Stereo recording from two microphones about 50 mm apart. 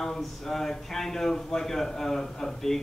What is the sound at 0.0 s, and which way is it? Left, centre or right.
Speech, centre.